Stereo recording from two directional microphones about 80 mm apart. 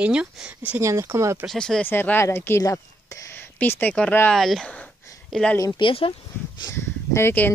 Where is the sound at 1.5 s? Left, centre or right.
Centre.